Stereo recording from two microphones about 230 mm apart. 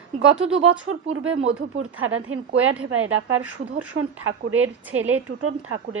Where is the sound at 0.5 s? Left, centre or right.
Right.